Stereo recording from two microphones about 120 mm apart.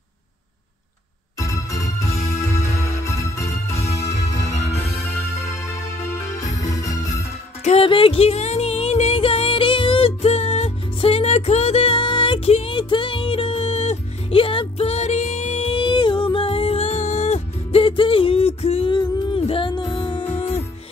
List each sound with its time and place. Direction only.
1.4 s music: 25° left (ahead or behind)
4.7 s music: 20° left (ahead or behind)
6.3 s music: 30° left (ahead or behind)
7.8 s music: 50° left (ahead or behind)
12.4 s a sound: 60° left (ahead or behind)
12.7 s music: 45° left (ahead or behind); by 15.7 s 65° left (ahead or behind)
15.7 s music: 40° left (ahead or behind); by 18.9 s 60° left (ahead or behind)
18.9 s music: 40° left (ahead or behind)